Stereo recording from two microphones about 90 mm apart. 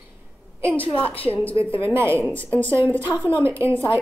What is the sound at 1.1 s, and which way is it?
Speech, 90° left.